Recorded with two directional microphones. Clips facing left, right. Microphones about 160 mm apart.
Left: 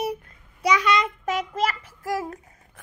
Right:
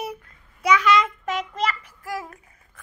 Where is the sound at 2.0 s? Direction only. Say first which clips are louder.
Left 5 dB; 30° left (ahead or behind).